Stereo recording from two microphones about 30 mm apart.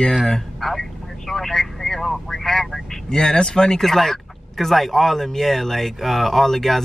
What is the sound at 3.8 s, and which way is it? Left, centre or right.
Speech, centre.